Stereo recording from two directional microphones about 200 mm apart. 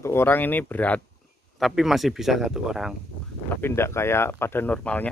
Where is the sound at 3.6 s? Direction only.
10° left (ahead or behind).